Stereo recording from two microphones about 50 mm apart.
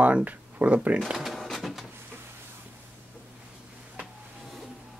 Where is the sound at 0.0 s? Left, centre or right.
Right.